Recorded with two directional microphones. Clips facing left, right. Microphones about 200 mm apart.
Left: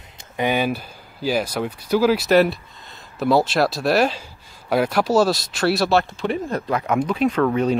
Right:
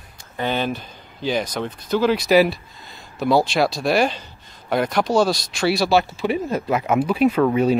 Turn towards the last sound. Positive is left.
turn(degrees=-10)  # may be behind; listen again after turning